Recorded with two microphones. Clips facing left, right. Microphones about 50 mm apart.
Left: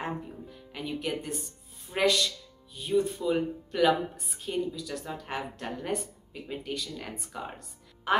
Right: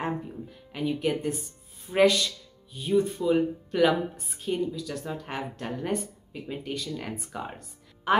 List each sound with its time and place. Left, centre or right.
0.0 s music: centre
1.9 s speech: centre